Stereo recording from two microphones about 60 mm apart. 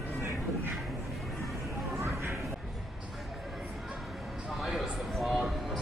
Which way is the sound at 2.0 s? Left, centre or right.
Right.